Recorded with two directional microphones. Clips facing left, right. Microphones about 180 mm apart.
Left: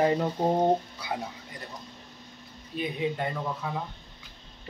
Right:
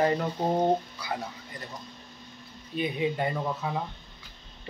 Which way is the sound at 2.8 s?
5° right (ahead or behind).